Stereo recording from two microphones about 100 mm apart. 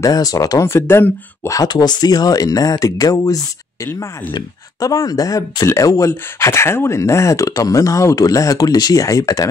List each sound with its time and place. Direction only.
0.0 s speech: 40° left (ahead or behind)
0.7 s speech: 25° left (ahead or behind)
1.6 s speech: 45° left (ahead or behind)
4.7 s speech: 35° left (ahead or behind)